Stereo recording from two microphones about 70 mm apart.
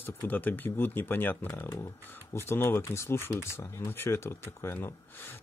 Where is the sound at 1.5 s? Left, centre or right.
Left.